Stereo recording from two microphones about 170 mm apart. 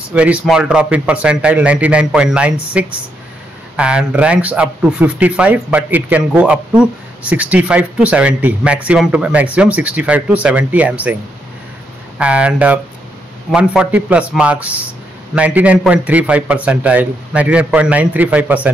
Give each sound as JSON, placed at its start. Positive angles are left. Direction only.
{"t": 0.1, "sound": "speech", "side_deg": -5}
{"t": 12.2, "sound": "speech", "side_deg": -5}